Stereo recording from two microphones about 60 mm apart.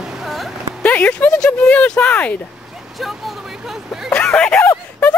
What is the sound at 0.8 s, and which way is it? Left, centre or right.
Speech, left.